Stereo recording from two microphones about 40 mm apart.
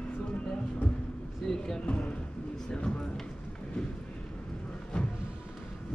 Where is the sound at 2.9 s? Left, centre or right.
Centre.